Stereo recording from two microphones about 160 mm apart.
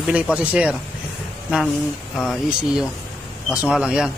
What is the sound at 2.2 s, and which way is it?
Speech, centre (ahead or behind).